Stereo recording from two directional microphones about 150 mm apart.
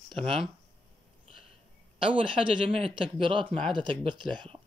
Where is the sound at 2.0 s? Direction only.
35° right (ahead or behind).